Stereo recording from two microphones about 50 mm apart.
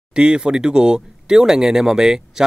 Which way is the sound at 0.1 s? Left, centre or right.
Centre.